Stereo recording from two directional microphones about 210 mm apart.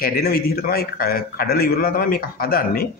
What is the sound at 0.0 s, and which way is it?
A man's voice, 45° left (ahead or behind).